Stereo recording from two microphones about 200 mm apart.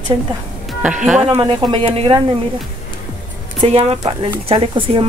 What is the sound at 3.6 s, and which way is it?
A woman's voice, 30° right (ahead or behind).